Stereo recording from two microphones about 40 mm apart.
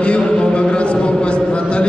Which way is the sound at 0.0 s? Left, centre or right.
Left.